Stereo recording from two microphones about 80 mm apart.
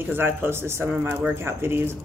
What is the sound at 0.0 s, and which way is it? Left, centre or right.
A woman's voice, right.